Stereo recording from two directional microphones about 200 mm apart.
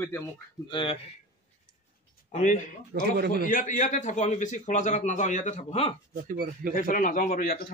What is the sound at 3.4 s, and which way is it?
A man's voice, 40° left (ahead or behind).